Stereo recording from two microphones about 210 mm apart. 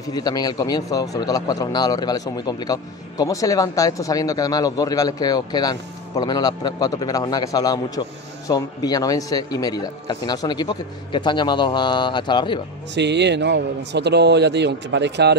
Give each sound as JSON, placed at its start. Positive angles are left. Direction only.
{"t": 0.1, "sound": "a man's voice", "side_deg": 20}
{"t": 12.9, "sound": "a man's voice", "side_deg": -55}